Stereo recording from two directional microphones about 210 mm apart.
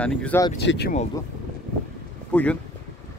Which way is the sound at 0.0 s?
5° left (ahead or behind).